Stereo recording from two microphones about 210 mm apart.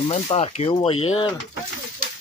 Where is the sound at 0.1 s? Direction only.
30° left (ahead or behind).